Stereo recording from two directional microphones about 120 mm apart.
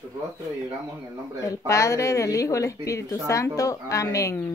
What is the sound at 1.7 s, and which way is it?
A woman's voice, 25° left (ahead or behind).